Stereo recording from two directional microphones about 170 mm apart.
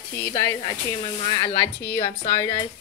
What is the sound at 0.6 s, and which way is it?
Speech, 30° left (ahead or behind).